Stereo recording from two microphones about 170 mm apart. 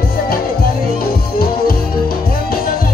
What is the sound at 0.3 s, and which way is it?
Music, 60° left (ahead or behind).